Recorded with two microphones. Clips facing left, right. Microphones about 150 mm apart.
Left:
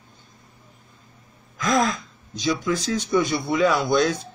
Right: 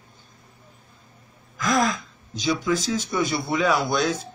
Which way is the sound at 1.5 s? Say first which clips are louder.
Left 1 dB; centre (ahead or behind).